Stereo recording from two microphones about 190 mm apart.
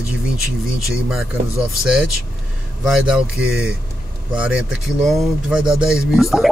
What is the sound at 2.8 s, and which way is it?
Speech, 5° right (ahead or behind).